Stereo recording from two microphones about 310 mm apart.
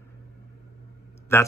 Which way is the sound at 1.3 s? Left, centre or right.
Centre.